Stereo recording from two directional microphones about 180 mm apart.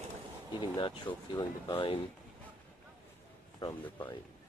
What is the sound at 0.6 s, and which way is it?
Speech, 25° left (ahead or behind).